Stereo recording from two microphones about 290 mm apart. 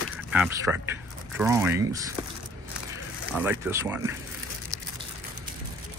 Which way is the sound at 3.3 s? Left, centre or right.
Centre.